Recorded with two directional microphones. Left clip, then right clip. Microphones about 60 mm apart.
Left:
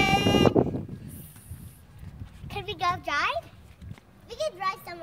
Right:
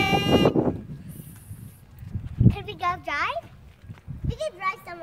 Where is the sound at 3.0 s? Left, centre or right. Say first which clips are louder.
Even; centre.